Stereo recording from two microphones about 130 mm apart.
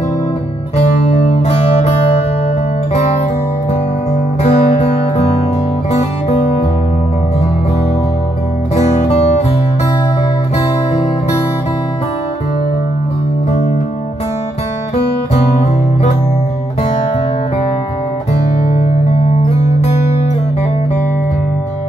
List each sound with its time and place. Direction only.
1.4 s music: 60° left (ahead or behind)
4.4 s music: 60° left (ahead or behind)
8.7 s music: 60° left (ahead or behind)
19.4 s music: 60° left (ahead or behind)